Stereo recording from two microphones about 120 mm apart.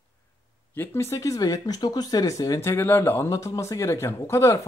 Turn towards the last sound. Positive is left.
turn(degrees=25)  # may be behind; listen again after turning